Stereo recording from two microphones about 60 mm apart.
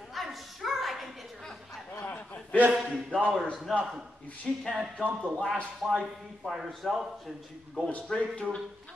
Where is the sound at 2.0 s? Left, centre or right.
Left.